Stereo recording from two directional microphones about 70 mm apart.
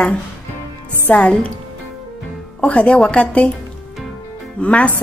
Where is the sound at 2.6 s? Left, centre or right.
Centre.